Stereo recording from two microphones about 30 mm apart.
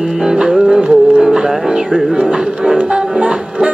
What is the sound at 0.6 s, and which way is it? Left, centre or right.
Music, right.